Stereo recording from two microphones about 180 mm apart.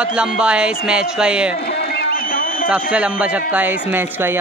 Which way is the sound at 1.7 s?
70° left (ahead or behind).